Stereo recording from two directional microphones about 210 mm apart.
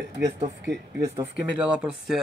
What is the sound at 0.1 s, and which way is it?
Speech, 55° right (ahead or behind).